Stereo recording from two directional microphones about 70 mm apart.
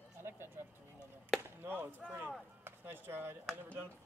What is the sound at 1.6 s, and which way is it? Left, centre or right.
Speech, right.